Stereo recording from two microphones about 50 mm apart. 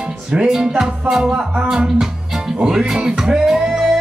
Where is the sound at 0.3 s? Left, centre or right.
Centre.